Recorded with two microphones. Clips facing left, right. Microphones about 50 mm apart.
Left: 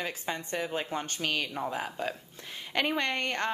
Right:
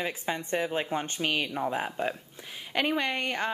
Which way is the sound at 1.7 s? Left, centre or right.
Right.